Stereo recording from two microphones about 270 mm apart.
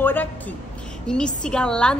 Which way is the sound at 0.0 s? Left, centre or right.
Centre.